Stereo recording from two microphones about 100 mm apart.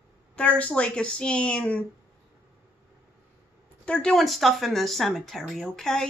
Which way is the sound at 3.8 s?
10° left (ahead or behind).